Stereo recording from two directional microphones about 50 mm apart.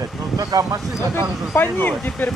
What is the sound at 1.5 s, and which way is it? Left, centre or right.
Speech, left.